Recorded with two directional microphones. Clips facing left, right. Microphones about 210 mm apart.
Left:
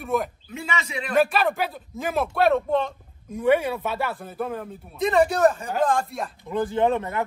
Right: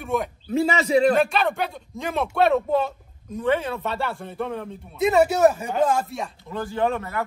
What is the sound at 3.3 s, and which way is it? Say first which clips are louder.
A man's voice: left 3 dB; 10° left (ahead or behind).